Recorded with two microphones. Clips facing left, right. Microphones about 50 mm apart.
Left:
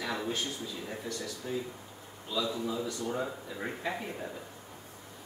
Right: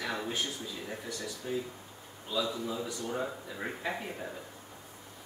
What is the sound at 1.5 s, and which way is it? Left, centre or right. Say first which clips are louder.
A man's voice: right 1 dB; centre.